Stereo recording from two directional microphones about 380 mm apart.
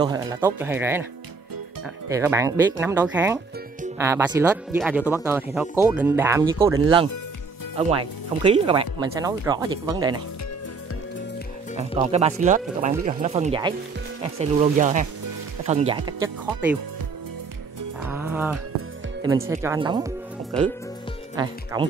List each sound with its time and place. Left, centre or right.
0.0 s speech: centre
2.0 s speech: centre
7.7 s speech: centre
11.7 s speech: centre
18.1 s music: centre
19.2 s speech: centre
21.4 s speech: centre